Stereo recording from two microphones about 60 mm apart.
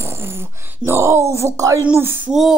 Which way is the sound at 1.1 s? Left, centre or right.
Right.